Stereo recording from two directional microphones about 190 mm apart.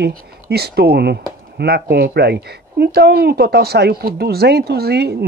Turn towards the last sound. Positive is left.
turn(degrees=-55)  # may be behind; listen again after turning